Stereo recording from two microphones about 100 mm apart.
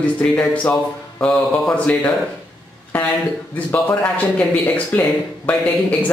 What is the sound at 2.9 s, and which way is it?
Speech, 15° left (ahead or behind).